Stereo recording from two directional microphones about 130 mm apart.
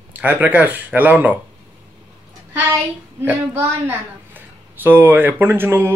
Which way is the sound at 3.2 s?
15° right (ahead or behind).